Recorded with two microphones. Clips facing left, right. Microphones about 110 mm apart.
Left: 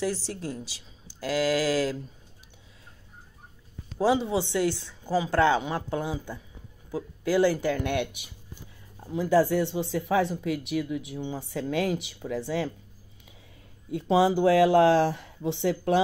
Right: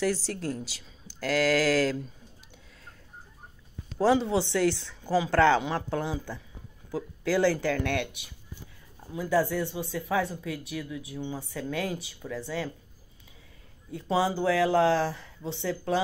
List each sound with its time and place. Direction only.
0.0 s speech: 15° left (ahead or behind)
4.0 s speech: 15° left (ahead or behind)
9.1 s speech: 25° left (ahead or behind)
13.9 s speech: 20° left (ahead or behind)